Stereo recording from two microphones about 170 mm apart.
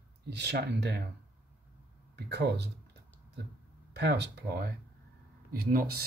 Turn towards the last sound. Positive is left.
turn(degrees=-65)  # may be behind; listen again after turning